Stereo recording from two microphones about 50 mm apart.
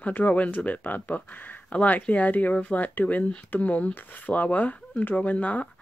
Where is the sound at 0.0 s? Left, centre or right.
Left.